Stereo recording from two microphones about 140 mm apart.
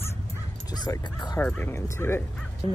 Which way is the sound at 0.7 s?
30° left (ahead or behind).